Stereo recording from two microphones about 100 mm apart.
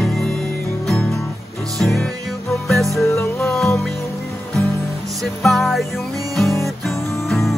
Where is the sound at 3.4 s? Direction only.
5° left (ahead or behind).